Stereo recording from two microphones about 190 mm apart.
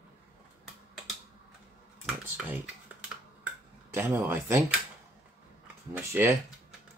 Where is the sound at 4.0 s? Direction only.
10° right (ahead or behind).